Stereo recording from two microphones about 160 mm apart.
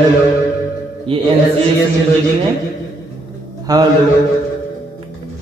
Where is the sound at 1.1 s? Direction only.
35° right (ahead or behind).